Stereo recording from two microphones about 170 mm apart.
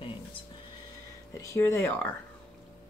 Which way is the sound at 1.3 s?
15° left (ahead or behind).